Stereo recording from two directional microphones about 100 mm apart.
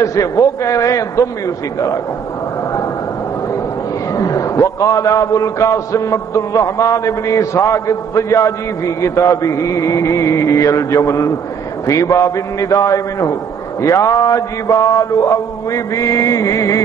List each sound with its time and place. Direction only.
0.0 s a man's voice: 35° left (ahead or behind)
4.2 s a man's voice: 35° left (ahead or behind)